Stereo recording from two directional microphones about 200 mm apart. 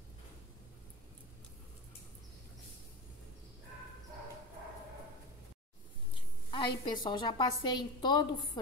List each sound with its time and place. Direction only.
6.5 s a woman's voice: 25° left (ahead or behind)